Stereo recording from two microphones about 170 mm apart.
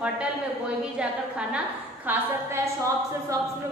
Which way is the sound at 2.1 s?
15° right (ahead or behind).